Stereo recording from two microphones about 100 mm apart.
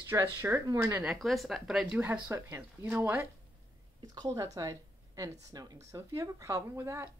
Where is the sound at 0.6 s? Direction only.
30° right (ahead or behind).